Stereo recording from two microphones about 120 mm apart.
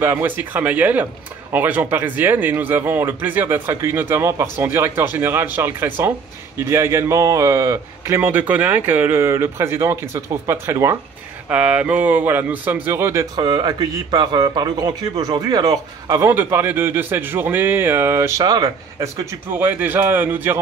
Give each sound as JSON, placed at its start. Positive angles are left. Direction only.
{"t": 0.0, "sound": "a man's voice", "side_deg": -15}
{"t": 11.4, "sound": "a man's voice", "side_deg": -10}
{"t": 13.4, "sound": "a man's voice", "side_deg": -40}
{"t": 16.3, "sound": "a man's voice", "side_deg": -20}
{"t": 18.4, "sound": "a man's voice", "side_deg": -30}
{"t": 19.5, "sound": "a man's voice", "side_deg": -15}